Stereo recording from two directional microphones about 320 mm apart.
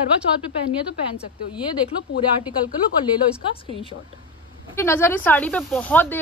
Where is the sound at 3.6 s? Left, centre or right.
Centre.